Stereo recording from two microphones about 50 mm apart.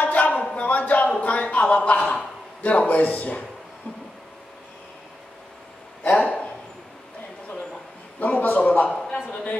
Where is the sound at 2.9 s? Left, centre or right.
Left.